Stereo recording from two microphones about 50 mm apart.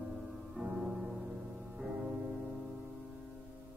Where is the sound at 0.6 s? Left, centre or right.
Centre.